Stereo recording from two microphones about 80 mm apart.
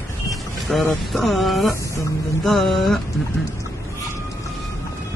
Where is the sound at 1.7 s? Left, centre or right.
Left.